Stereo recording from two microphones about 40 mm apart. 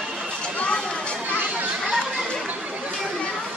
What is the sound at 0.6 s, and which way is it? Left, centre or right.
Chatter, left.